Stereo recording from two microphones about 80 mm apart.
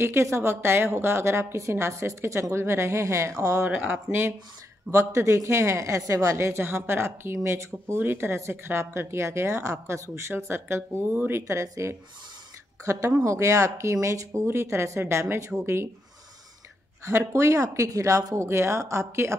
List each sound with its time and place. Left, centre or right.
0.0 s speech: right
3.6 s speech: right
4.9 s speech: right
11.4 s speech: right
17.0 s speech: right